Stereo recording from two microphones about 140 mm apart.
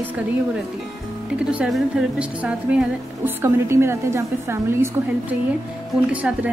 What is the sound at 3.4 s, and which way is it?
A woman's voice, 20° right (ahead or behind).